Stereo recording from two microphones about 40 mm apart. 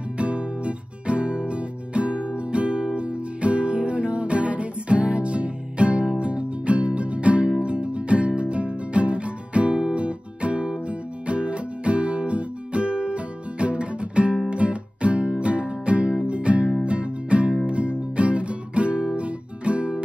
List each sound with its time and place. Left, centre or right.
0.2 s music: right